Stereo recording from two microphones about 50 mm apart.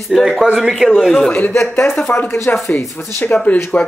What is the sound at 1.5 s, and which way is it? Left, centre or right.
Speech, left.